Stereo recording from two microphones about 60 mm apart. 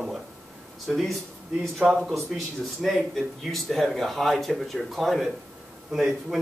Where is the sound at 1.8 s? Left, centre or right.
Centre.